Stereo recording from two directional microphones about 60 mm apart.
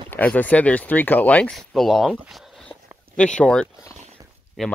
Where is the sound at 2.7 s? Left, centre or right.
Centre.